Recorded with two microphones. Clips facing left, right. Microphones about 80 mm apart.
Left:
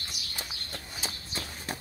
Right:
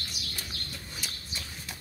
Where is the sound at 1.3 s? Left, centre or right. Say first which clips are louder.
Left 5 dB; left.